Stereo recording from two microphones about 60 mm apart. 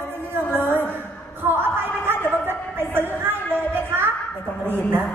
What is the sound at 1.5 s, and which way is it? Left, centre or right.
Music, right.